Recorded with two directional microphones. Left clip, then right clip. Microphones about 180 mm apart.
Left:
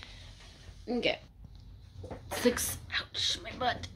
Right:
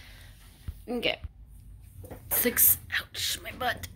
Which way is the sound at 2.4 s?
10° left (ahead or behind).